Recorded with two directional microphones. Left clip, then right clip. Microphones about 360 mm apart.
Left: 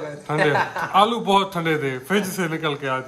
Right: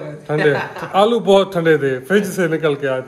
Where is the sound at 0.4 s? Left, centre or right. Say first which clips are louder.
Right 2 dB; left.